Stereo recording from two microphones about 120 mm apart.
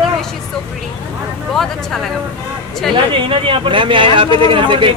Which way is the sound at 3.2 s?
50° right (ahead or behind).